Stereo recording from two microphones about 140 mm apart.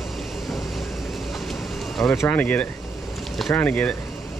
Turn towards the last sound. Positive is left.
turn(degrees=10)  # may be behind; listen again after turning